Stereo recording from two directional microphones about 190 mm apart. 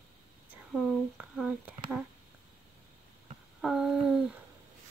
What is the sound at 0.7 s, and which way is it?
Speech, 5° left (ahead or behind).